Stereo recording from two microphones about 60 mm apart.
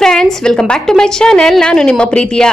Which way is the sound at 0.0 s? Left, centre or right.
Centre.